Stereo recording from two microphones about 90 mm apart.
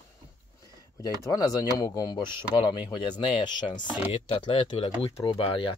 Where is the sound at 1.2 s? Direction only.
40° left (ahead or behind); by 3.7 s 60° left (ahead or behind).